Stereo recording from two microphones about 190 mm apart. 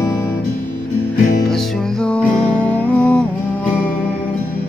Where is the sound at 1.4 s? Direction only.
5° left (ahead or behind).